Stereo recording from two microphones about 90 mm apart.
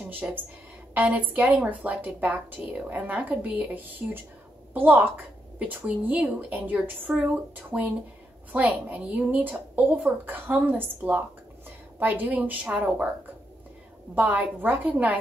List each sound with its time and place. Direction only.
0.0 s a woman's voice: 20° right (ahead or behind)
14.1 s a woman's voice: 15° right (ahead or behind)